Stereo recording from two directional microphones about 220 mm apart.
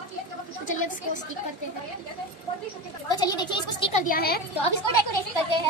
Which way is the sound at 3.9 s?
40° left (ahead or behind).